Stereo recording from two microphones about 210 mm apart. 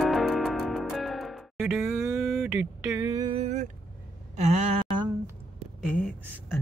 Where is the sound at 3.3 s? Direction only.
30° right (ahead or behind).